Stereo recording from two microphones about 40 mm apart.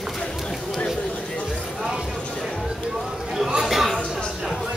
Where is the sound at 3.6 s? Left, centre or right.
Centre.